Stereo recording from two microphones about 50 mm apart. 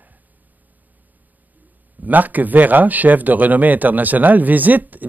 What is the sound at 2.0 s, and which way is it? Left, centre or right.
Speech, right.